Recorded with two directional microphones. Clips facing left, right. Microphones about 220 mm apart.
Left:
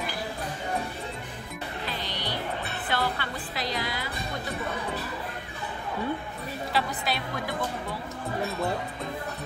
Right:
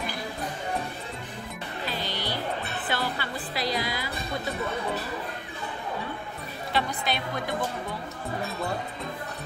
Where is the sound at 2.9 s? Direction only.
10° right (ahead or behind).